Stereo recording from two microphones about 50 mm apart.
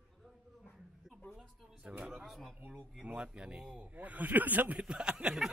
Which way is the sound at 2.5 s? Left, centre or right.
Right.